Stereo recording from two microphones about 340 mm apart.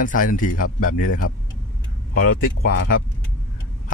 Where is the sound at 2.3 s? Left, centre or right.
Left.